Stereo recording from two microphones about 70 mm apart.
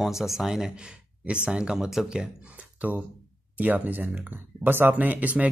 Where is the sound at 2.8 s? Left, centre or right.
Right.